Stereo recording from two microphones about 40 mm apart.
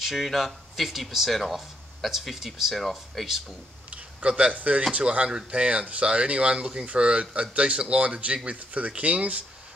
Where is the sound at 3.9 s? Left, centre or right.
Right.